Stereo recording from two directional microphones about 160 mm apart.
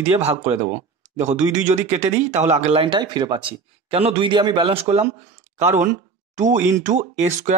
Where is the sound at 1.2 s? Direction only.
50° right (ahead or behind); by 4.7 s 30° right (ahead or behind).